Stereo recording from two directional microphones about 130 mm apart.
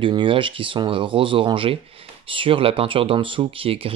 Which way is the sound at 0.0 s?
40° right (ahead or behind).